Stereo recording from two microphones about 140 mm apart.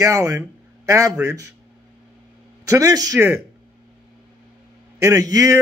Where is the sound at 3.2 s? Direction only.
15° right (ahead or behind).